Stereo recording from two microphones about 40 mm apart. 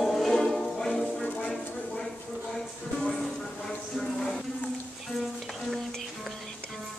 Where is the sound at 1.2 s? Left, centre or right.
Left.